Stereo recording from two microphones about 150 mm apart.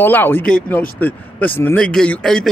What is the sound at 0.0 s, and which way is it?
Speech, 15° left (ahead or behind).